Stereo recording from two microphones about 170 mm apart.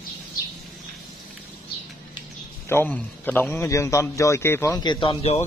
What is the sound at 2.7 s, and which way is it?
A man's voice, 10° left (ahead or behind).